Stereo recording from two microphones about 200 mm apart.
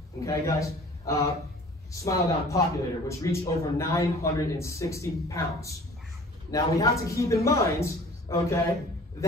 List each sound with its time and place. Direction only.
0.2 s a man's voice: 15° left (ahead or behind)